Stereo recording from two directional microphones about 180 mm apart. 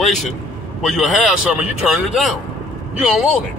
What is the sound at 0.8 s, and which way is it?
Speech, centre (ahead or behind).